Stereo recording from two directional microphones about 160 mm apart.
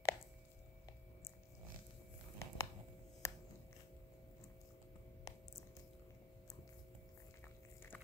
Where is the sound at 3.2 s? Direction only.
20° left (ahead or behind).